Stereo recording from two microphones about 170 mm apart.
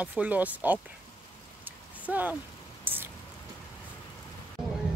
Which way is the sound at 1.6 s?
10° right (ahead or behind).